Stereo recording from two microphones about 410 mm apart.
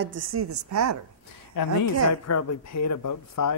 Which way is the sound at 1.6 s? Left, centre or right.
Left.